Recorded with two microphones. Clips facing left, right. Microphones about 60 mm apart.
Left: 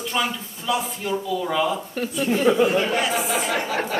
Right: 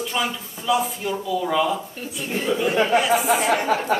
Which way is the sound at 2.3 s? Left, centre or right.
Left.